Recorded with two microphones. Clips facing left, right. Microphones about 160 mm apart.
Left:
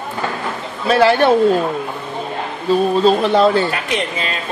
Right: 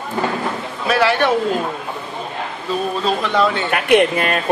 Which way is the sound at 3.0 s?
30° left (ahead or behind).